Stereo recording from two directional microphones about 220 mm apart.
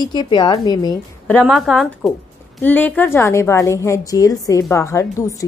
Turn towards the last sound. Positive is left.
turn(degrees=15)  # may be behind; listen again after turning